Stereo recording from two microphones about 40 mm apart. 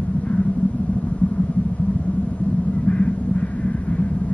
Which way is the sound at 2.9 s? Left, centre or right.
Left.